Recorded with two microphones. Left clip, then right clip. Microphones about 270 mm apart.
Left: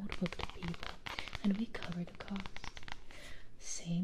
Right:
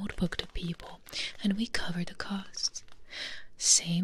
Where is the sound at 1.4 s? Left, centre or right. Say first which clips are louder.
Right 8 dB; right.